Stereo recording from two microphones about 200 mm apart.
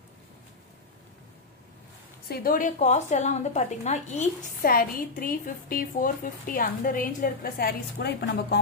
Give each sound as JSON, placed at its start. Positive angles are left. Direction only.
{"t": 2.2, "sound": "a woman's voice", "side_deg": 50}